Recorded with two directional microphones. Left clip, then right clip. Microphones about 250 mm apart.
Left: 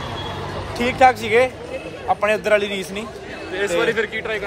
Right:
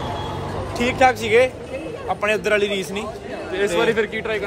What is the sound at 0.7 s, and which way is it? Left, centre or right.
A man's voice, centre.